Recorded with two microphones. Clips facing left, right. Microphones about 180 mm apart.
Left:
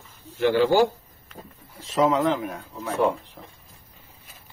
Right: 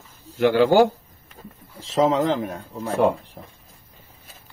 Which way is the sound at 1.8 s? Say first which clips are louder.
Right 2 dB; 30° right (ahead or behind).